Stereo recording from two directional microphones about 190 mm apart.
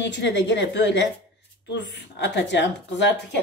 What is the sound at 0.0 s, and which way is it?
Speech, 65° left (ahead or behind).